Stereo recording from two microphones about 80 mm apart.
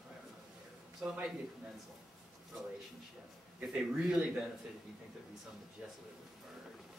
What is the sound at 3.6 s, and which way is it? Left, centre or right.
Speech, centre.